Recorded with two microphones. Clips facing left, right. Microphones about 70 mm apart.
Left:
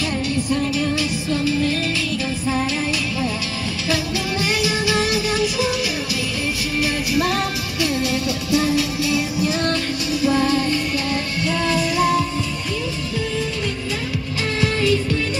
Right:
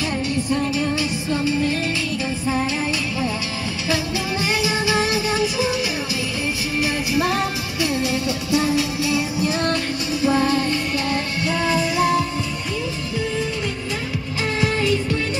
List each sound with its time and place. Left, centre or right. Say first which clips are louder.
4.5 s music: even; right
7.2 s music: even; centre
10.2 s music: even; right
14.6 s music: left 2 dB; right